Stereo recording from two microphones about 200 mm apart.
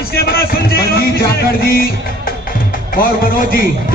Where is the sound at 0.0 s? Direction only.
50° left (ahead or behind).